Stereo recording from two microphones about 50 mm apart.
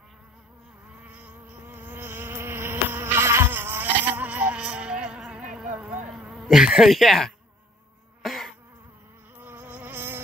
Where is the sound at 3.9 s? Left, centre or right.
Right.